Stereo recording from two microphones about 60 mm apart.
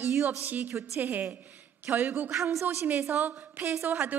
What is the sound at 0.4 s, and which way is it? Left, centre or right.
A woman's voice, right.